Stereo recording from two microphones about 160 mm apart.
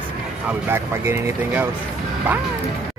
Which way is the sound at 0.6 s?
15° right (ahead or behind).